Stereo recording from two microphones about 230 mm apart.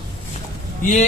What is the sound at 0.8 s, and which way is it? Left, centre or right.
Speech, left.